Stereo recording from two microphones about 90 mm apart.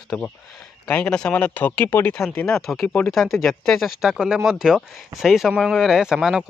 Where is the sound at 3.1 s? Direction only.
Centre (ahead or behind).